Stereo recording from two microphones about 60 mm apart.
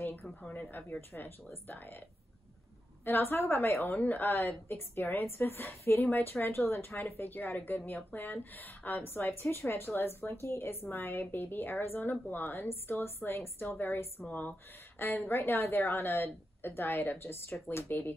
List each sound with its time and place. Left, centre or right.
0.1 s speech: left
3.1 s speech: left